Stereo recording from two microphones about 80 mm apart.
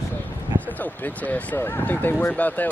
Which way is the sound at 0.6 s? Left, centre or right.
Centre.